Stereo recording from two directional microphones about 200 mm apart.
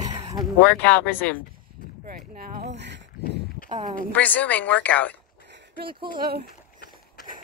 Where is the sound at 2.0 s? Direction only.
50° right (ahead or behind).